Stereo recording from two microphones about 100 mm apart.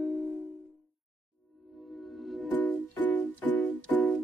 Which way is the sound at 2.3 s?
Centre (ahead or behind).